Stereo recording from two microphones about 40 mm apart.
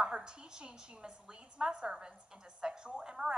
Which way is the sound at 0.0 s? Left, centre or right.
Right.